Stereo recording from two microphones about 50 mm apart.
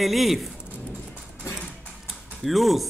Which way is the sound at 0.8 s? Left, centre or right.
Left.